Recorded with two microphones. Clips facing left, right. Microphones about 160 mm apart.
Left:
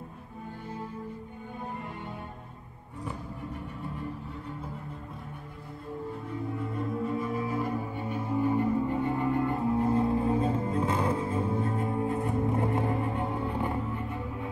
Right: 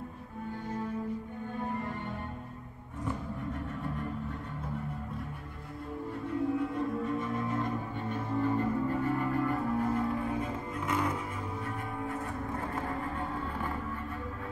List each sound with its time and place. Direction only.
6.6 s music: centre (ahead or behind); by 14.5 s 15° left (ahead or behind)